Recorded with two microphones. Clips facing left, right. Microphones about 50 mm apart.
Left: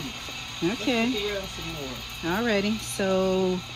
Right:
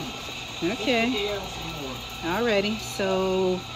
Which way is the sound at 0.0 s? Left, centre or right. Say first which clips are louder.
Right 2 dB; left.